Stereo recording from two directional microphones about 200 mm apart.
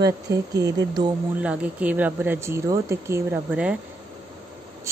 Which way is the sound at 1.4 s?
5° right (ahead or behind).